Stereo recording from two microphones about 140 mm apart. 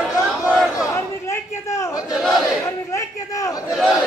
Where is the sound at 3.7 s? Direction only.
5° right (ahead or behind).